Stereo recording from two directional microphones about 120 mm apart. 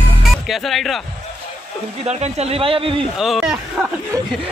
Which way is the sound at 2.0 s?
65° right (ahead or behind).